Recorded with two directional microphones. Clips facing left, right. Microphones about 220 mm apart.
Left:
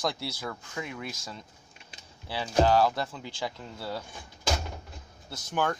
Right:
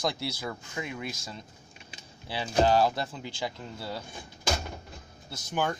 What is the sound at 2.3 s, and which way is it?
Speech, 20° right (ahead or behind).